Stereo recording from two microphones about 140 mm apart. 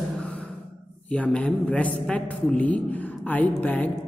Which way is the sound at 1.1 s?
10° left (ahead or behind).